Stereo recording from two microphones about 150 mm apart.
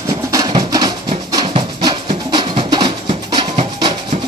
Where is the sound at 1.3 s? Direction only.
30° right (ahead or behind).